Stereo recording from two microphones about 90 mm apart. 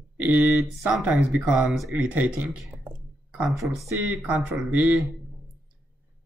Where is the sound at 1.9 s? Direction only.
15° right (ahead or behind).